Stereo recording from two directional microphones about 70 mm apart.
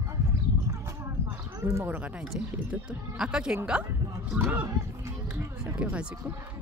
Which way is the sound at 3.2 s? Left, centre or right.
Centre.